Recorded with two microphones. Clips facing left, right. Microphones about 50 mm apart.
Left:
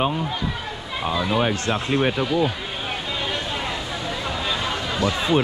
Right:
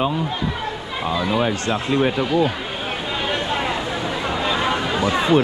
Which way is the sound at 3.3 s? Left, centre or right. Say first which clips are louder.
Right 7 dB; centre.